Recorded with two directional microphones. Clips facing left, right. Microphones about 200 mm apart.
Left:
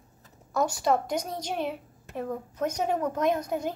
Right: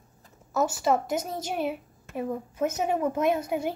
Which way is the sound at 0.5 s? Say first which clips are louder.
Right 1 dB; 5° right (ahead or behind).